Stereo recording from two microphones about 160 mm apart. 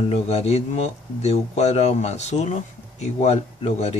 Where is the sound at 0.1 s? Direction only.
45° left (ahead or behind).